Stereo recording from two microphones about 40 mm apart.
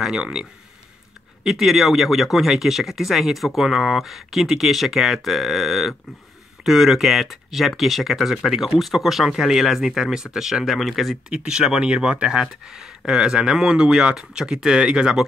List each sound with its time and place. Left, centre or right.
0.1 s speech: centre
1.4 s speech: centre
11.2 s speech: centre